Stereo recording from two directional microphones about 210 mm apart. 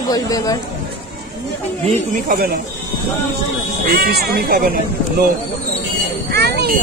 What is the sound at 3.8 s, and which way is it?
Speech, 45° right (ahead or behind).